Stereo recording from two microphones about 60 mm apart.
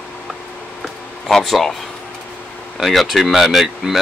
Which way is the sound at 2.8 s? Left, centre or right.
Centre.